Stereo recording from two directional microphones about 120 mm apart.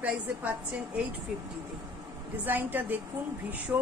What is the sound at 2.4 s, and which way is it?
A woman's voice, 15° right (ahead or behind).